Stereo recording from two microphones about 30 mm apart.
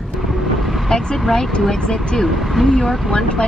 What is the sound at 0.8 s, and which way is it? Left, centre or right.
Speech, centre.